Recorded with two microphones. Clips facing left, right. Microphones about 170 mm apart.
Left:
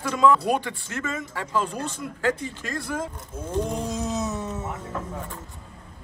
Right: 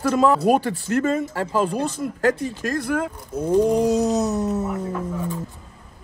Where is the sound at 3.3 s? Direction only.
40° right (ahead or behind).